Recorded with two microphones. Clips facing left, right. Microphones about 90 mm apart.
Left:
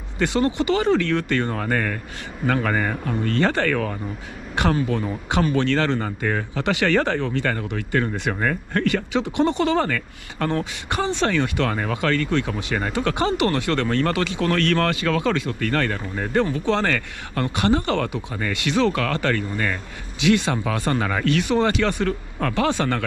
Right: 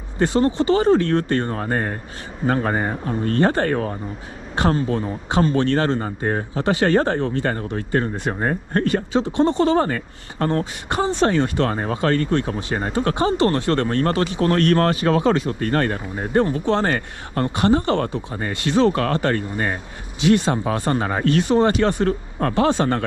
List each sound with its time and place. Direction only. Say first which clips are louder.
0.2 s speech: right 3 dB; 20° right (ahead or behind)
5.3 s speech: right 2 dB; 20° right (ahead or behind)
7.7 s speech: right 1 dB; 30° right (ahead or behind)